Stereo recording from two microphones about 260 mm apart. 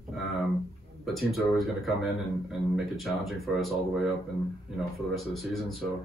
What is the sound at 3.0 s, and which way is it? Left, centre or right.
Speech, centre.